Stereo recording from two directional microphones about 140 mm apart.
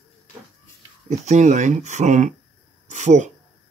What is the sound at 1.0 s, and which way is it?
Speech, 60° right (ahead or behind).